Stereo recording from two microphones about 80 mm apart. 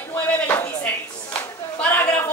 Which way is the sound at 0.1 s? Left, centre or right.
Left.